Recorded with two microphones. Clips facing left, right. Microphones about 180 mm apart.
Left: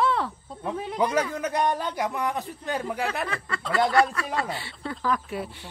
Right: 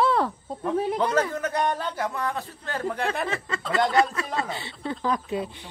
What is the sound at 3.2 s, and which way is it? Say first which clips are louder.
Speech: right 2 dB; 20° right (ahead or behind).